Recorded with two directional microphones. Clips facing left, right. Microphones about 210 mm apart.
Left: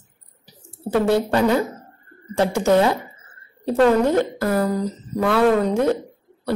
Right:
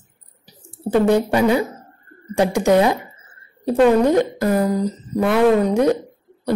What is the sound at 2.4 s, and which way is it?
Speech, 15° right (ahead or behind).